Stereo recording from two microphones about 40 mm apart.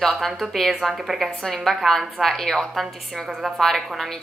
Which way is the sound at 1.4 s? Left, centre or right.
Centre.